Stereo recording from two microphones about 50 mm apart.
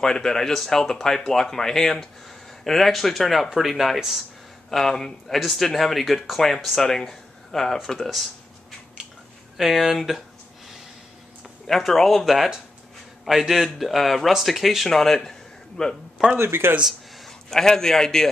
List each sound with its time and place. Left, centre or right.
0.0 s speech: centre
9.6 s speech: centre
11.4 s speech: centre
16.3 s speech: right
17.2 s a man's voice: centre